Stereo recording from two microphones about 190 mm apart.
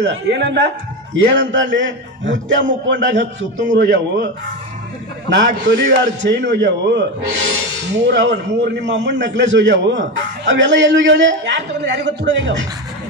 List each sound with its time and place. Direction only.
0.0 s a man's voice: 65° right (ahead or behind)
5.7 s a man's voice: 65° right (ahead or behind)